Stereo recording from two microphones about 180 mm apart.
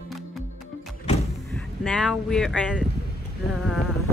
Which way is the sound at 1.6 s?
5° left (ahead or behind).